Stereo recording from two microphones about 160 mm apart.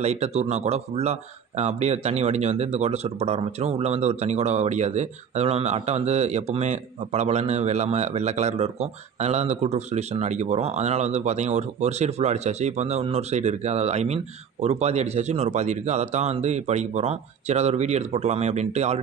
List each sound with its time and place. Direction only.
0.0 s speech: 40° right (ahead or behind)